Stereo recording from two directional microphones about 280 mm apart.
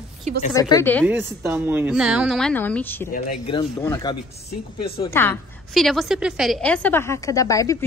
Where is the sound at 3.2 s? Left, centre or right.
Left.